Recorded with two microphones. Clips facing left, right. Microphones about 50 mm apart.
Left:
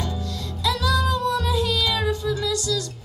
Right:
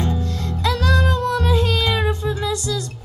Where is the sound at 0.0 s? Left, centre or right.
Right.